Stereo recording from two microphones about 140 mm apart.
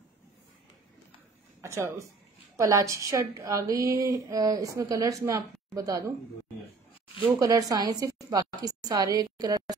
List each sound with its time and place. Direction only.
1.6 s a woman's voice: 20° right (ahead or behind)
7.3 s a woman's voice: 25° right (ahead or behind)